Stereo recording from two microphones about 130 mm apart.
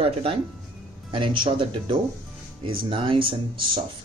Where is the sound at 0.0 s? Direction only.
45° right (ahead or behind).